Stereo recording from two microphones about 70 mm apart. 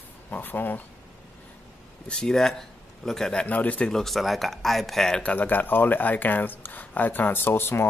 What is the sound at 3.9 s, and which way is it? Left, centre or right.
Speech, centre.